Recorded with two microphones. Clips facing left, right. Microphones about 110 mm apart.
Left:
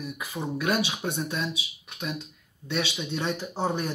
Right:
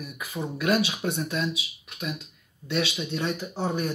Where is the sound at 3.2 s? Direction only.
30° left (ahead or behind).